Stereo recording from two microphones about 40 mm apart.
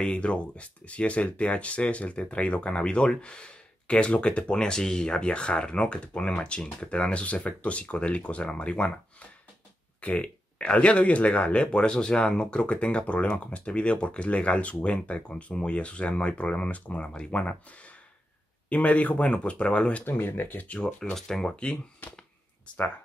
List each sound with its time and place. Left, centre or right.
0.0 s speech: left
5.1 s speech: left
9.9 s a sound: left
10.2 s speech: left
20.1 s speech: left
20.8 s speech: centre